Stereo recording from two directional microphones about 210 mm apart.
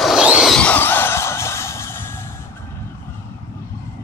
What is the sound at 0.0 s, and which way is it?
Music, 5° right (ahead or behind).